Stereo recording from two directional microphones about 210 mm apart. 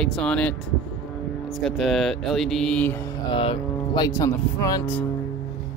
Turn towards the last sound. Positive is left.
turn(degrees=15)  # may be behind; listen again after turning